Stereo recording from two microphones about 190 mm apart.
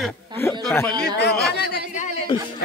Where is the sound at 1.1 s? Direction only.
60° left (ahead or behind).